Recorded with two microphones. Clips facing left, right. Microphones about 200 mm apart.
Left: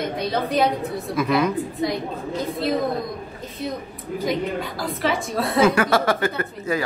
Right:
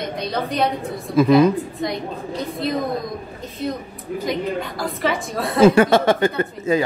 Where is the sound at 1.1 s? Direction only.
30° right (ahead or behind).